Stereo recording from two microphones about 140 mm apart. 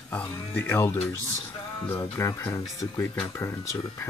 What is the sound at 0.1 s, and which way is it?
Speech, 15° left (ahead or behind).